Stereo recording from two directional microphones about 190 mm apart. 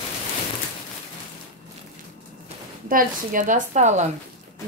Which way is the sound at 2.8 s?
45° right (ahead or behind).